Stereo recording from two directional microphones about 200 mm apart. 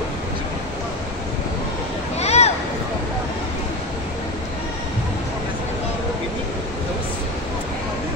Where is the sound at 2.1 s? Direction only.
30° left (ahead or behind).